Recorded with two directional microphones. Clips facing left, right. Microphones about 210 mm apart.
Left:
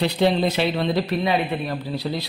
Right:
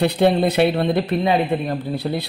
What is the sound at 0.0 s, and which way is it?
A man's voice, 55° right (ahead or behind).